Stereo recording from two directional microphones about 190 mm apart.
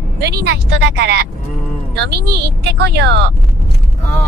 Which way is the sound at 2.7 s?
60° right (ahead or behind).